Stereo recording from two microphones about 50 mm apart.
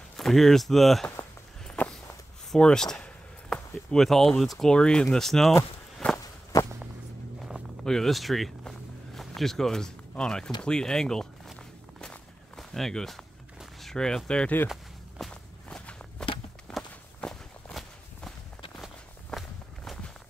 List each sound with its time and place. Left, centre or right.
0.2 s speech: centre
1.8 s walk: left
2.5 s a sound: centre
3.9 s speech: centre
4.7 s speech: centre
5.1 s speech: centre
6.0 s walk: left
7.8 s speech: centre
12.5 s speech: centre
15.2 s walk: centre
15.7 s walk: centre